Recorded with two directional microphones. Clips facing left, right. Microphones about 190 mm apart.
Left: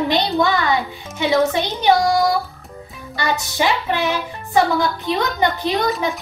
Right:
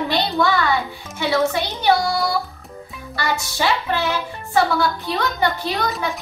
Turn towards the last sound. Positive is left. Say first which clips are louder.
# left 3 dB
turn(degrees=20)  # may be behind; listen again after turning